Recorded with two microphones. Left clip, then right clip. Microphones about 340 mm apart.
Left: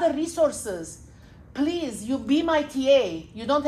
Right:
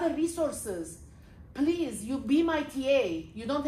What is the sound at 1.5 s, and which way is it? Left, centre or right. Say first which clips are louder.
A woman's voice: left 2 dB; left.